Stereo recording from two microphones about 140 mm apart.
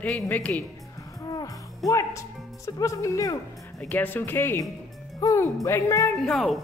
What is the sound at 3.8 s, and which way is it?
A woman's voice, 10° left (ahead or behind).